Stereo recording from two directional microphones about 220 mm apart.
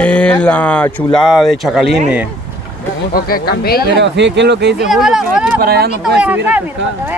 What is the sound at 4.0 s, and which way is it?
Speech, 50° right (ahead or behind).